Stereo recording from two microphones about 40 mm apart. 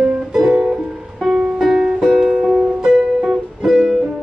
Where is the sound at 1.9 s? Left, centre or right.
Centre.